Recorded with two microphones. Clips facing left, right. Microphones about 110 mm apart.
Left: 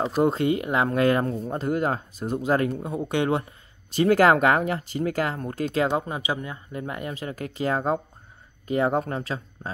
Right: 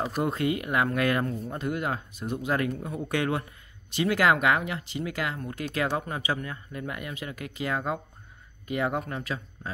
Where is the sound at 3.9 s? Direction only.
40° left (ahead or behind).